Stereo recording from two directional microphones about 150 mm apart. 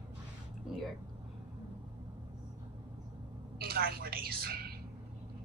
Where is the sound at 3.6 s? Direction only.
90° right.